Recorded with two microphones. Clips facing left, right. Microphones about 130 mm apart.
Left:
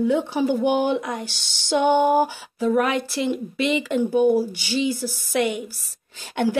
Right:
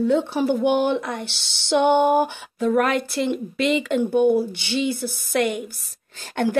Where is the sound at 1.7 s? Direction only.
15° right (ahead or behind).